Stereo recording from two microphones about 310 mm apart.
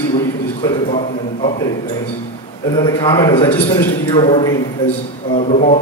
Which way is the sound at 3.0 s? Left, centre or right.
Centre.